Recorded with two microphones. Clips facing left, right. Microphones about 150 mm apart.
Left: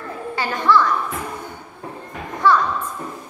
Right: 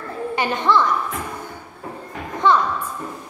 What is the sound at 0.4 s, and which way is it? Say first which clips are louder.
Speech: left 1 dB; 20° right (ahead or behind).